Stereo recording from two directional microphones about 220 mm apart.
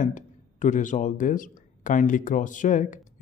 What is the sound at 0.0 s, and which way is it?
Speech, 35° left (ahead or behind).